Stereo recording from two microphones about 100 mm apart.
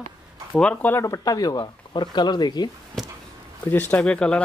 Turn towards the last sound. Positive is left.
turn(degrees=10)  # may be behind; listen again after turning